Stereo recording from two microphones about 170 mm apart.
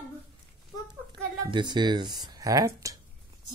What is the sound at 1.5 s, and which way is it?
Speech, 25° right (ahead or behind).